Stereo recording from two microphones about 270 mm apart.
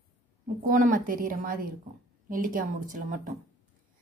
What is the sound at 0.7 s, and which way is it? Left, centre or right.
A woman's voice, right.